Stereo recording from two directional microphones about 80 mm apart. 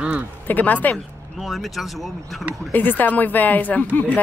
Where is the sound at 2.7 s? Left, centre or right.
Left.